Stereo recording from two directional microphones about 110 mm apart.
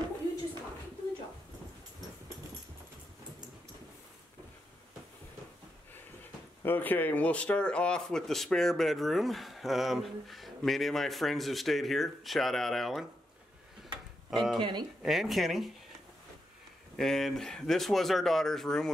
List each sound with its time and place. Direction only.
6.6 s speech: 15° left (ahead or behind); by 13.0 s centre (ahead or behind)
14.3 s speech: centre (ahead or behind)
14.6 s speech: 40° right (ahead or behind)
15.0 s speech: centre (ahead or behind)
16.9 s speech: 5° left (ahead or behind)